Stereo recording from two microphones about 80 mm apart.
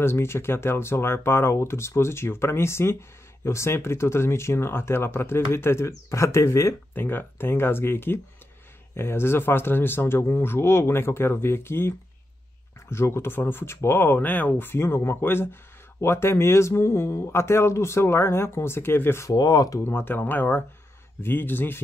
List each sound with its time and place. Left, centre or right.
0.0 s speech: left
6.9 s speech: left
12.9 s speech: left
19.2 s speech: left
19.8 s speech: left